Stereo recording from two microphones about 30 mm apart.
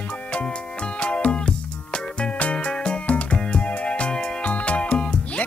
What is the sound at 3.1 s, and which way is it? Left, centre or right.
Music, left.